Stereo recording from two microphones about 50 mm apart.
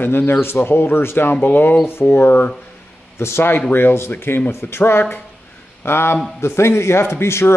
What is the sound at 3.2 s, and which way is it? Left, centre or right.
Speech, left.